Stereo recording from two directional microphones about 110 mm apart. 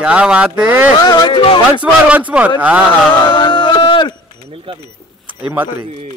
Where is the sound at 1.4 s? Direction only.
50° left (ahead or behind).